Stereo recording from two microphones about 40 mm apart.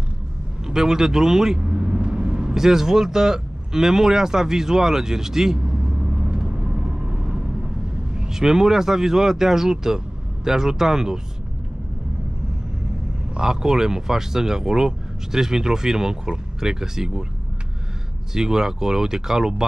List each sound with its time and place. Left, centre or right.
0.7 s speech: centre
1.6 s vehicle: right
2.5 s speech: centre
5.7 s vehicle: right
8.1 s speech: centre
13.4 s speech: centre
18.3 s speech: centre